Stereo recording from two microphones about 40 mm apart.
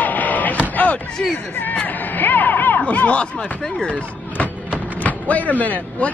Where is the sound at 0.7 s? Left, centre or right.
Left.